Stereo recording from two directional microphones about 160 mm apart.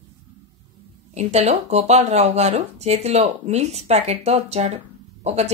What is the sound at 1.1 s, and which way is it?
Speech, 45° right (ahead or behind).